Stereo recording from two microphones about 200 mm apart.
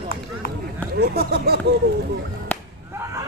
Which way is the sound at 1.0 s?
55° right (ahead or behind).